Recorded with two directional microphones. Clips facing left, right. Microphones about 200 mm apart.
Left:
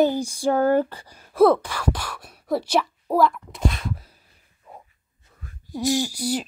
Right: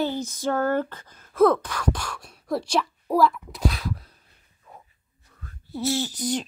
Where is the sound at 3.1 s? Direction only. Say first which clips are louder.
Left 1 dB; centre (ahead or behind).